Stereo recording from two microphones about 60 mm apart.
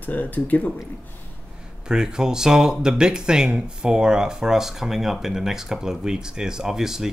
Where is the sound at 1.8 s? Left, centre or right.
Centre.